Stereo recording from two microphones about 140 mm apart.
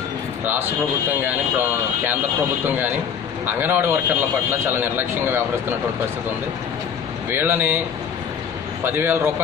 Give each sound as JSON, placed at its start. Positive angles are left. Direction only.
{"t": 1.2, "sound": "a man's voice", "side_deg": -15}
{"t": 3.4, "sound": "a man's voice", "side_deg": -15}
{"t": 7.2, "sound": "a man's voice", "side_deg": -15}
{"t": 8.8, "sound": "a man's voice", "side_deg": -15}